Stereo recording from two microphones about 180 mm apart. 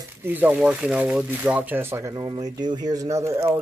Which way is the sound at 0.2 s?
10° right (ahead or behind).